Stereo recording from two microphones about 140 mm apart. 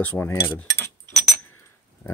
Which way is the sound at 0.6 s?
15° left (ahead or behind).